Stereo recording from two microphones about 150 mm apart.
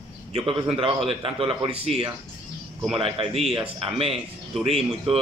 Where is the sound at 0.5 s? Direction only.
40° right (ahead or behind).